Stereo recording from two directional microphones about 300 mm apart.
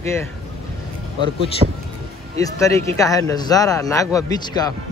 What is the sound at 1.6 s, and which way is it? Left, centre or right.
Speech, centre.